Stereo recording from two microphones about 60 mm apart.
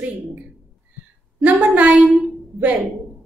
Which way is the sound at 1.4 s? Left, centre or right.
Right.